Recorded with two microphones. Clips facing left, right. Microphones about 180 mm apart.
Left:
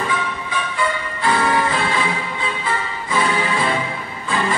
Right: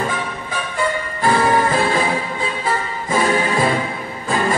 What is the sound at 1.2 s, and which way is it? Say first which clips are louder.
Music: right 3 dB; 45° right (ahead or behind).